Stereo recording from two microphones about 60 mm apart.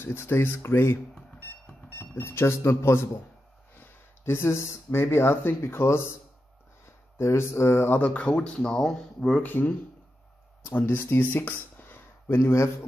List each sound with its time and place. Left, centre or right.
0.0 s speech: left
4.2 s speech: left
7.2 s speech: left
8.0 s speech: left
9.4 s speech: left